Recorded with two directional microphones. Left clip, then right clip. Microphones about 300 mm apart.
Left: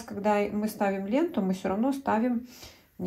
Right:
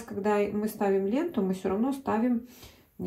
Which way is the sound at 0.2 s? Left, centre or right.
Centre.